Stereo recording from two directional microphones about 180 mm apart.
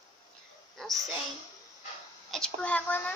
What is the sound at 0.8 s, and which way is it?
Speech, centre (ahead or behind).